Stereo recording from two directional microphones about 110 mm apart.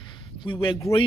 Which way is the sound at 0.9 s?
25° left (ahead or behind).